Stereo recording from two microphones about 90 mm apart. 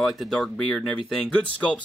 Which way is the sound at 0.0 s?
Centre (ahead or behind).